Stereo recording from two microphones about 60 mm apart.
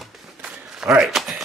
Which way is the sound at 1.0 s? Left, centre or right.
Centre.